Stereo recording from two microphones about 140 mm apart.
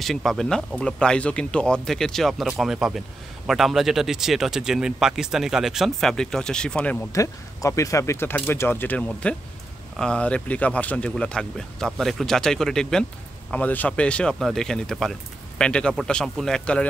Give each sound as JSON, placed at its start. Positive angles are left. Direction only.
{"t": 0.0, "sound": "speech", "side_deg": 0}
{"t": 7.1, "sound": "speech", "side_deg": 20}